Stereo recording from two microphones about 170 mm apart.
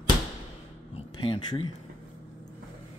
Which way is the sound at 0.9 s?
30° left (ahead or behind).